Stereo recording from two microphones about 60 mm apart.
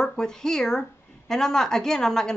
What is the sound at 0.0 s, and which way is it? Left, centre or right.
A woman's voice, centre.